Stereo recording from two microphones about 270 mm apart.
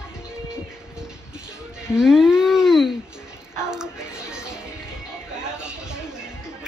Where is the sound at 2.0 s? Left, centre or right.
Centre.